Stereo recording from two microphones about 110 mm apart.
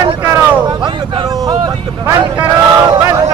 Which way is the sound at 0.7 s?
45° right (ahead or behind).